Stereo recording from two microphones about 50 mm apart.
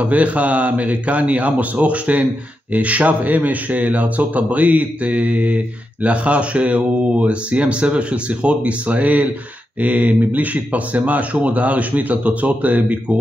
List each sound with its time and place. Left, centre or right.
0.0 s speech: right